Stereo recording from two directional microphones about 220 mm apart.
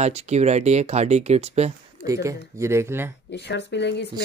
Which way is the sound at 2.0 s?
15° right (ahead or behind).